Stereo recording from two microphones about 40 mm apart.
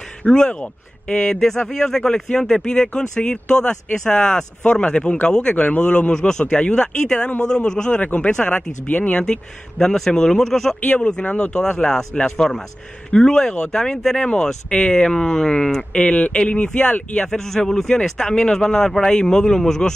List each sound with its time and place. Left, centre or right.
0.2 s speech: left
6.1 s a man's voice: centre
8.0 s speech: left
8.3 s speech: left
8.8 s speech: left
9.2 s a man's voice: centre
11.0 s speech: left
11.2 s speech: left
11.5 s a man's voice: centre